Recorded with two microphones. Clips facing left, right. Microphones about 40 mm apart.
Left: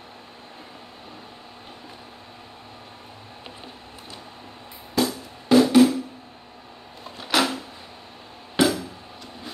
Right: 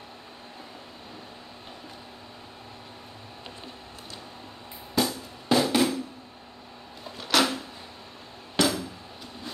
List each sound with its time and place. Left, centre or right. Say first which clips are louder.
4.9 s music: left 3 dB; centre
7.2 s a sound: left 1 dB; centre
8.6 s music: left 4 dB; centre